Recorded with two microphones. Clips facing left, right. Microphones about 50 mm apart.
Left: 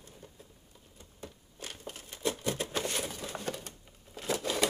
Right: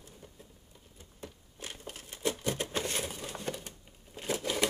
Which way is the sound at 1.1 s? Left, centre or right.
Right.